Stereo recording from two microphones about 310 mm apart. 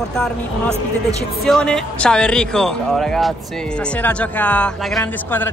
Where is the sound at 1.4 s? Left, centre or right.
Centre.